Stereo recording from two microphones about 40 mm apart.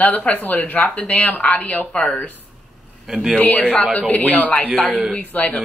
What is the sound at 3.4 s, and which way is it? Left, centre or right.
A woman's voice, left.